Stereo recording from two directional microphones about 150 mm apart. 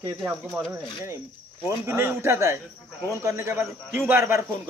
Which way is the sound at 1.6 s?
15° right (ahead or behind).